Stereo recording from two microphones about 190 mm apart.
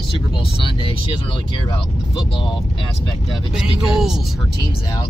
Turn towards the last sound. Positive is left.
turn(degrees=0)  # may be behind; listen again after turning